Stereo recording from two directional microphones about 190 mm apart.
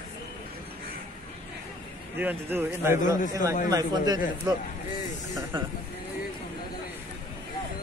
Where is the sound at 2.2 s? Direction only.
10° right (ahead or behind).